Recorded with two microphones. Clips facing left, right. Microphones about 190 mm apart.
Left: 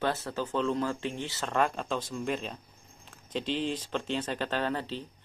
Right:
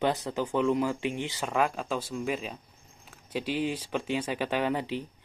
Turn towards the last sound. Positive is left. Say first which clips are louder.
# right 3 dB
turn(degrees=-15)  # may be behind; listen again after turning